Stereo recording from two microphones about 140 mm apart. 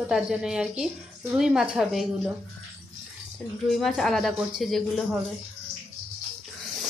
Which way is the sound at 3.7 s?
Centre (ahead or behind).